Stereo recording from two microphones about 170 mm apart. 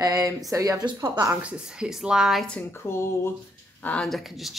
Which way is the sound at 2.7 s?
15° left (ahead or behind).